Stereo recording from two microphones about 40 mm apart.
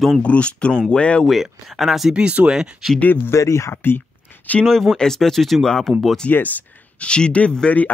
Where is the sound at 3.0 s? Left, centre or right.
Left.